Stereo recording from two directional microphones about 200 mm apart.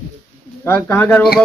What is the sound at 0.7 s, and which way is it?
Speech, 10° left (ahead or behind).